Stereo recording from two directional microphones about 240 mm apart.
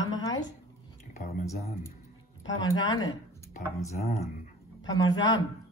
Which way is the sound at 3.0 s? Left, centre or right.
Centre.